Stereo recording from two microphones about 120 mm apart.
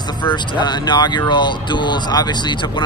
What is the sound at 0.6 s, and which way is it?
Speech, 40° left (ahead or behind).